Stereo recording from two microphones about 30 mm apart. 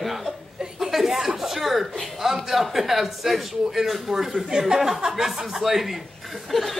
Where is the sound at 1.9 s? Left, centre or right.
Centre.